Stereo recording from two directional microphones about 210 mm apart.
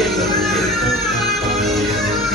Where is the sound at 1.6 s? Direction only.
Centre (ahead or behind).